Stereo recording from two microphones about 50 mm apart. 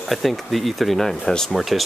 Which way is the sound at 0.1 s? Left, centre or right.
Centre.